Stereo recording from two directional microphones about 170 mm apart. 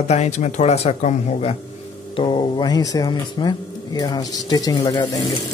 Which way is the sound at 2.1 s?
30° left (ahead or behind).